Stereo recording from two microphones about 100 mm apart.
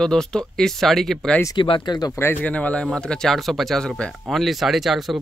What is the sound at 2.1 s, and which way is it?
Speech, 25° left (ahead or behind).